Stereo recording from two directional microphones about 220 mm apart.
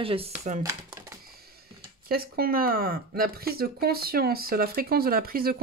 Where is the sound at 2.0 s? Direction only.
45° right (ahead or behind).